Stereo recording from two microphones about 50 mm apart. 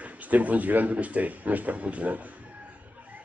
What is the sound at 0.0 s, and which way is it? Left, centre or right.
Speech, right.